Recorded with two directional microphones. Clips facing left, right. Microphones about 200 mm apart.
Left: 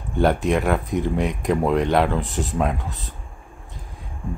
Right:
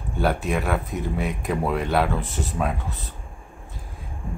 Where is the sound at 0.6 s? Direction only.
15° left (ahead or behind).